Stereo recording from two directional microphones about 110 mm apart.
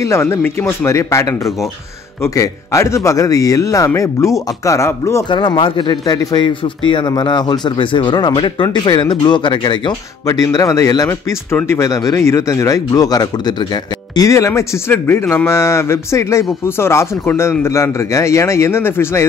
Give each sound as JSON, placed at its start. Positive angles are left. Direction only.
{"t": 0.0, "sound": "speech", "side_deg": 25}
{"t": 5.3, "sound": "speech", "side_deg": 50}
{"t": 11.5, "sound": "speech", "side_deg": 20}